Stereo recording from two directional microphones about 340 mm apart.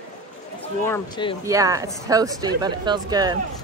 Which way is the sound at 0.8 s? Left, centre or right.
Centre.